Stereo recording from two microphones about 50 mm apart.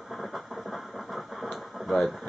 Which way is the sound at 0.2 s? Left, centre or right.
Centre.